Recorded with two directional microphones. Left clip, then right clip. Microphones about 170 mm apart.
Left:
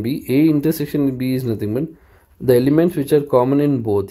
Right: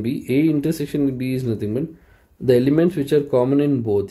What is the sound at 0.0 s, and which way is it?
Speech, 25° left (ahead or behind).